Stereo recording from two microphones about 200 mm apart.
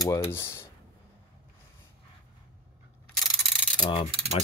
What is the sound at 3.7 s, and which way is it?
Mechanisms, 25° left (ahead or behind).